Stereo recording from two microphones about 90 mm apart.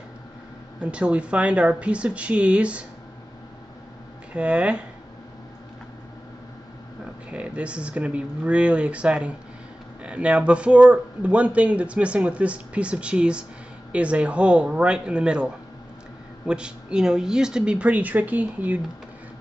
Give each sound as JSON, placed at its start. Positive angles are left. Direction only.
{"t": 0.7, "sound": "a man's voice", "side_deg": -15}
{"t": 4.3, "sound": "a man's voice", "side_deg": -15}
{"t": 7.2, "sound": "a man's voice", "side_deg": -15}